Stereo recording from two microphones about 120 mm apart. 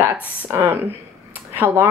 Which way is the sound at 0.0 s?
25° right (ahead or behind).